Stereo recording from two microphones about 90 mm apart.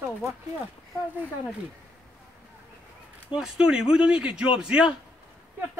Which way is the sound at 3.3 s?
10° right (ahead or behind).